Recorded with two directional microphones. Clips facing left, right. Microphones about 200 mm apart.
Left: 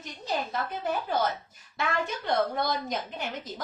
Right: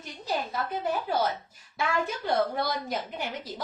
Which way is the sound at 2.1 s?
5° right (ahead or behind).